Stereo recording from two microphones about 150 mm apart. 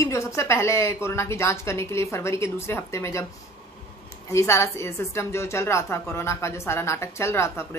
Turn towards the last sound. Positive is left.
turn(degrees=15)  # may be behind; listen again after turning